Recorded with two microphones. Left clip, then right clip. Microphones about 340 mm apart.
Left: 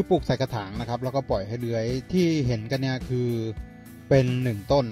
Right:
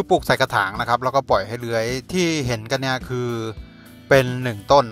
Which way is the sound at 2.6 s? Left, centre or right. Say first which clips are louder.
Right 6 dB; right.